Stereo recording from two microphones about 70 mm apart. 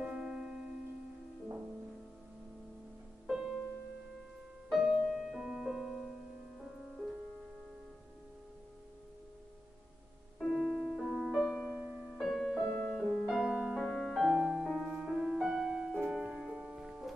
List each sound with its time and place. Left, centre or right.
0.0 s music: centre
3.3 s music: centre
4.6 s music: centre
10.4 s music: centre
11.4 s music: centre
11.8 s music: centre
12.1 s music: centre
12.7 s music: centre
13.3 s music: centre
13.8 s music: centre